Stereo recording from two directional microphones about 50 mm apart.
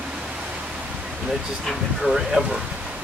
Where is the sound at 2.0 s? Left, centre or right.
Centre.